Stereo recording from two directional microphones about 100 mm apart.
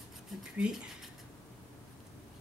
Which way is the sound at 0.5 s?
10° right (ahead or behind).